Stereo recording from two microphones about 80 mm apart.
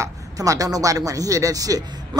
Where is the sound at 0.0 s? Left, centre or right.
Right.